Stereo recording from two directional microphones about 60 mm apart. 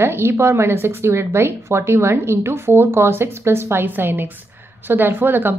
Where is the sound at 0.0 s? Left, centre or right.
Right.